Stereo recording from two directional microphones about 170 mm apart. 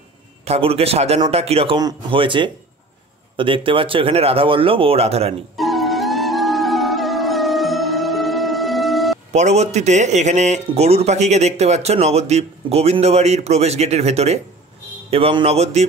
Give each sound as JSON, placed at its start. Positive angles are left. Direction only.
{"t": 0.5, "sound": "speech", "side_deg": -35}
{"t": 5.6, "sound": "music", "side_deg": 0}
{"t": 9.3, "sound": "speech", "side_deg": -40}